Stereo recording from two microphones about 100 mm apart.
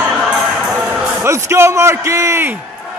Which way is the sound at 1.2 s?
25° right (ahead or behind).